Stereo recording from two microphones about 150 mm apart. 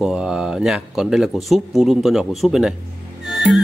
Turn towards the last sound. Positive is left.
turn(degrees=0)  # may be behind; listen again after turning